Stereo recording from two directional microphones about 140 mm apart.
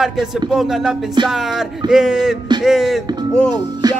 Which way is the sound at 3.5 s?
30° right (ahead or behind).